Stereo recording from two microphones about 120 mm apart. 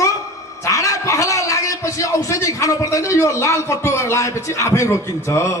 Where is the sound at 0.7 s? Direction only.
25° left (ahead or behind).